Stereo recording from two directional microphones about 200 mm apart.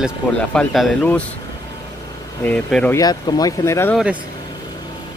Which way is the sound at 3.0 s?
20° left (ahead or behind).